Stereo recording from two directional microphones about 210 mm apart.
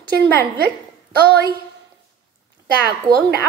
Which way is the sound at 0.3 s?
50° right (ahead or behind).